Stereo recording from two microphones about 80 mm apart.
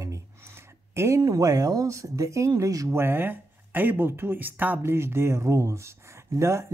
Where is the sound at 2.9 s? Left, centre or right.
Right.